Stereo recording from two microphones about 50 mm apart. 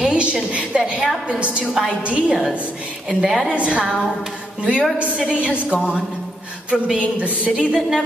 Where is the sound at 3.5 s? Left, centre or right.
Right.